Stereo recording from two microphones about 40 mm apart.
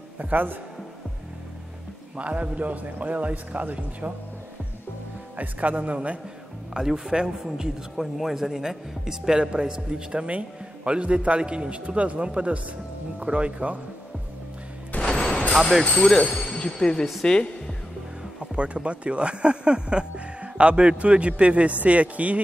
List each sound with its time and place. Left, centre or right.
0.2 s a man's voice: right
2.1 s a man's voice: right
5.3 s a man's voice: right
6.7 s a man's voice: centre; by 13.7 s right
15.1 s music: centre
15.8 s speech: centre
18.4 s a man's voice: right